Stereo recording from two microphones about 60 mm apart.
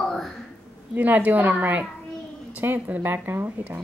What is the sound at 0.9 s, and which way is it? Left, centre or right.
A woman's voice, right.